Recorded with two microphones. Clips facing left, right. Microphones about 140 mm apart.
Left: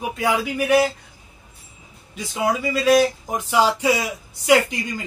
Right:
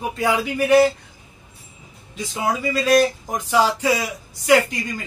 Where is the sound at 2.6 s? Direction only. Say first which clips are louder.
Even; 5° left (ahead or behind).